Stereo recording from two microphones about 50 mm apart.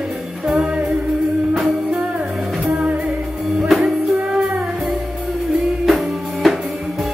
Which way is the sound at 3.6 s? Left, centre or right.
Centre.